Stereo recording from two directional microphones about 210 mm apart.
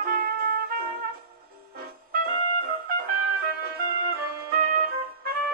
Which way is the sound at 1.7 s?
45° right (ahead or behind).